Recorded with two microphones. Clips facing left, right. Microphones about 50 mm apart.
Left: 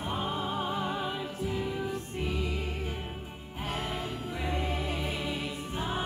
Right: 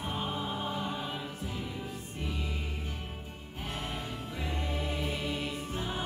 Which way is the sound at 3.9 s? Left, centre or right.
Left.